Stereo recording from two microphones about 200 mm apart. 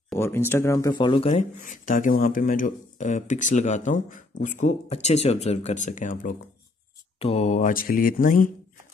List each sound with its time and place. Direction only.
0.1 s a sound: 10° left (ahead or behind)
0.5 s speech: 15° left (ahead or behind)
1.6 s speech: 40° left (ahead or behind)
7.2 s mantra: 30° left (ahead or behind)